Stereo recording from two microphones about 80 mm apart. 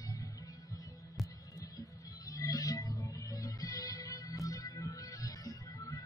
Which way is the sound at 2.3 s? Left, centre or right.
Left.